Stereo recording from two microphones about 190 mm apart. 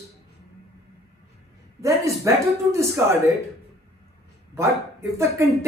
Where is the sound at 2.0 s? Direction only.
15° right (ahead or behind).